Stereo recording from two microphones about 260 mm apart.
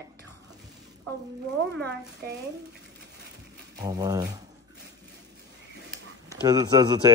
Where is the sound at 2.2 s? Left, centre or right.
Right.